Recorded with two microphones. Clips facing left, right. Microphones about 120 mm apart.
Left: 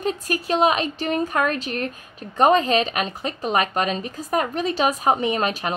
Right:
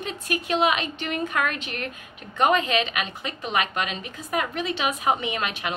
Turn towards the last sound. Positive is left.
turn(degrees=40)  # may be behind; listen again after turning